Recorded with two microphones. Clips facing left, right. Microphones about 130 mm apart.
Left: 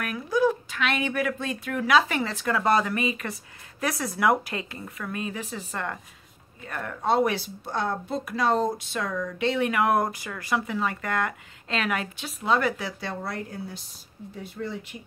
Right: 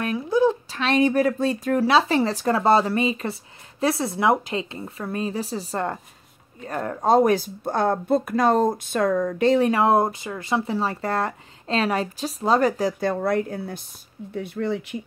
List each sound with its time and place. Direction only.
0.0 s a woman's voice: 25° right (ahead or behind); by 15.0 s 65° right (ahead or behind)